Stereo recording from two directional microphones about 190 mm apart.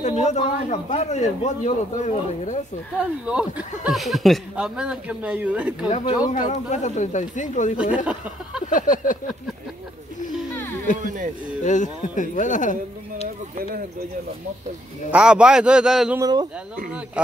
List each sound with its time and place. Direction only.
0.0 s a man's voice: 35° left (ahead or behind)
2.9 s speech: 5° right (ahead or behind)
6.4 s a man's voice: 35° left (ahead or behind)
7.7 s speech: 5° right (ahead or behind)
8.6 s a sound: 45° left (ahead or behind)
11.6 s a man's voice: 40° left (ahead or behind)
15.0 s speech: 5° right (ahead or behind)
16.2 s speech: 20° right (ahead or behind)